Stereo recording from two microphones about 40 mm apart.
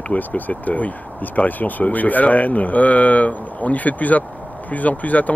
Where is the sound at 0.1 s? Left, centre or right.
Left.